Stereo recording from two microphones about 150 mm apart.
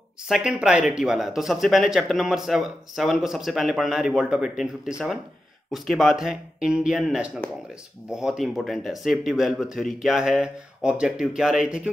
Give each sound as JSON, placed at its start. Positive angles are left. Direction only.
{"t": 0.3, "sound": "speech", "side_deg": -5}